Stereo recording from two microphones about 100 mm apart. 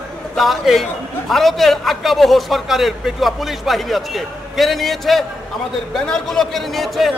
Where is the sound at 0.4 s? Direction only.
Centre (ahead or behind).